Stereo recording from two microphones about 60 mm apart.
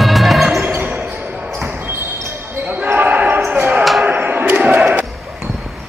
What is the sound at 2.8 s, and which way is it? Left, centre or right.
Basketball bounce, right.